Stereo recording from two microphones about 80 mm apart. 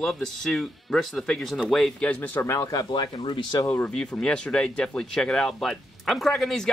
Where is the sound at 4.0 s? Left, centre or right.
Centre.